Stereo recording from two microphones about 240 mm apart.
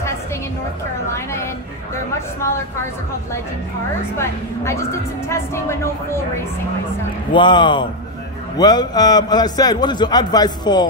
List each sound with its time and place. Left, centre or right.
1.1 s a man's voice: centre
4.2 s a man's voice: centre
7.3 s a man's voice: centre